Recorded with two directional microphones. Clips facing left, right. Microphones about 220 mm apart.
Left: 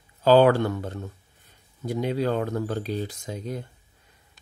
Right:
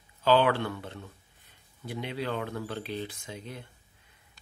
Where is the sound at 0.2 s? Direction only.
40° left (ahead or behind).